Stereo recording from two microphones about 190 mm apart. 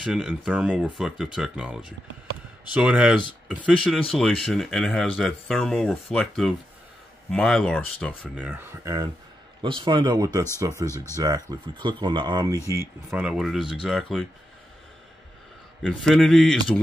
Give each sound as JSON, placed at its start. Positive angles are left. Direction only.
{"t": 0.0, "sound": "speech", "side_deg": -5}
{"t": 8.4, "sound": "speech", "side_deg": -10}
{"t": 15.8, "sound": "speech", "side_deg": 0}